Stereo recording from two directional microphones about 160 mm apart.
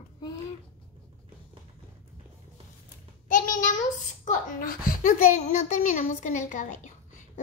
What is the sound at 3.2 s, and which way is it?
Child singing, 55° left (ahead or behind).